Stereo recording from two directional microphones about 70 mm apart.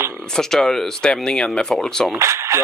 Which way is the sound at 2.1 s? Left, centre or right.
Right.